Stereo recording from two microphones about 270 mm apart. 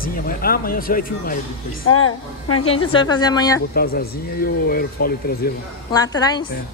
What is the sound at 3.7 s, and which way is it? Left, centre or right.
Speech, left.